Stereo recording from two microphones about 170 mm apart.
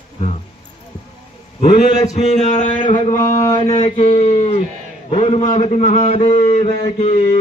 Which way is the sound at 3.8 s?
35° left (ahead or behind).